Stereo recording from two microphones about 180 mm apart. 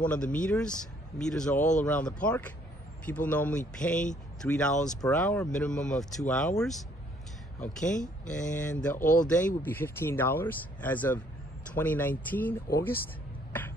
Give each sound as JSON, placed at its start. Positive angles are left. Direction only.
{"t": 0.0, "sound": "speech", "side_deg": 5}
{"t": 1.6, "sound": "speech", "side_deg": 45}
{"t": 1.9, "sound": "speech", "side_deg": 5}
{"t": 9.0, "sound": "speech", "side_deg": 45}
{"t": 9.6, "sound": "speech", "side_deg": 10}
{"t": 13.5, "sound": "a sound", "side_deg": 10}